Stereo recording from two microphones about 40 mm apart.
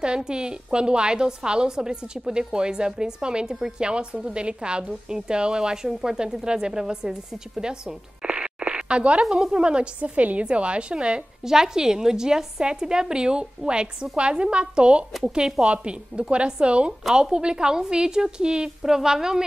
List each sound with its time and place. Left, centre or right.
0.0 s a woman's voice: right
8.2 s a sound: right
9.2 s a woman's voice: centre
9.9 s a woman's voice: right
11.4 s a woman's voice: centre
15.2 s a woman's voice: centre
15.6 s a woman's voice: right; by 19.4 s centre